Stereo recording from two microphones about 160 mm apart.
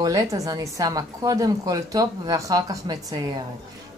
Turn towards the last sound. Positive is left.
turn(degrees=-25)  # may be behind; listen again after turning